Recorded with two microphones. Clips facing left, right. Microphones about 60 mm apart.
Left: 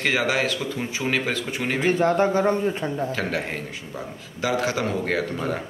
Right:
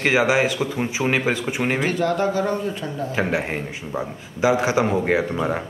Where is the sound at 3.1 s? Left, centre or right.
Centre.